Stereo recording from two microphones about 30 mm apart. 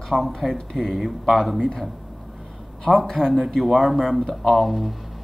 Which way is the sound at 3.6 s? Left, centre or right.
Centre.